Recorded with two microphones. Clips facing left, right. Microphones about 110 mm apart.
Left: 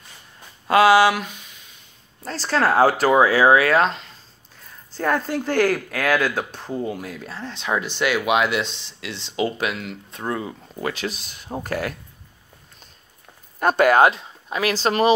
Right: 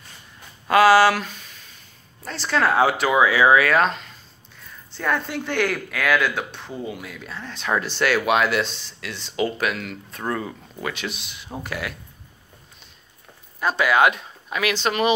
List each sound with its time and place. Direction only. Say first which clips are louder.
0.7 s speech: even; 25° left (ahead or behind)
2.2 s speech: left 1 dB; 35° left (ahead or behind)
4.9 s speech: left 3 dB; 40° left (ahead or behind)
7.6 s speech: right 1 dB; 15° left (ahead or behind)
10.8 s speech: left 3 dB; 35° left (ahead or behind)
13.6 s speech: left 4 dB; 50° left (ahead or behind)
14.1 s speech: left 1 dB; 30° left (ahead or behind)